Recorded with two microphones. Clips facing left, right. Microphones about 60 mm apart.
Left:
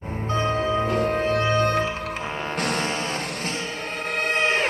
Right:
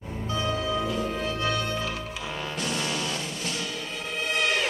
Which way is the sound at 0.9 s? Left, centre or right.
Left.